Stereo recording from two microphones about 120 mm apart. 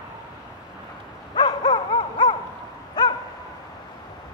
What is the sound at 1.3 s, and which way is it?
Dog, 35° left (ahead or behind).